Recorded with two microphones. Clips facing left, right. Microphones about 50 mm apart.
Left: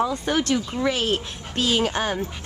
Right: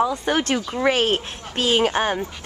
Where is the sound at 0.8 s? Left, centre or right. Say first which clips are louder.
Right 7 dB; right.